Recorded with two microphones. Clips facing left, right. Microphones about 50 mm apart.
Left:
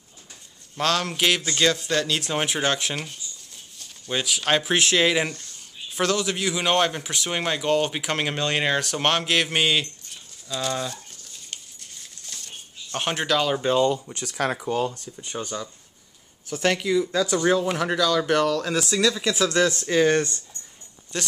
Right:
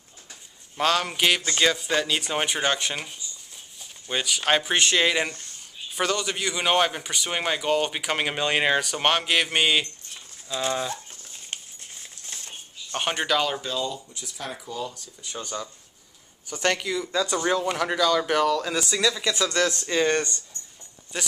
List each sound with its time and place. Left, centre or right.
0.7 s a man's voice: centre
10.5 s speech: centre
11.1 s a sound: right
12.9 s a man's voice: centre
13.7 s speech: left
15.4 s speech: left
16.4 s a man's voice: centre
17.9 s a man's voice: centre
21.1 s speech: centre